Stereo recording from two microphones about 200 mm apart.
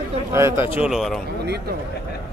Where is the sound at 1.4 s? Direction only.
55° right (ahead or behind).